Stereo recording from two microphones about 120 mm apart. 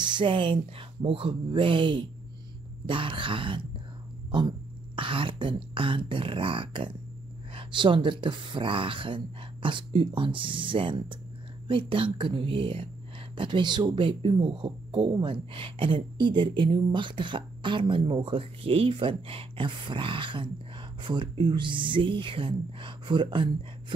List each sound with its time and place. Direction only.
0.0 s speech: 40° right (ahead or behind)
4.3 s a sound: 40° right (ahead or behind)
5.8 s speech: 45° right (ahead or behind)